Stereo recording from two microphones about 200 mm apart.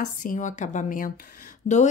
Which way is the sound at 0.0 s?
40° left (ahead or behind).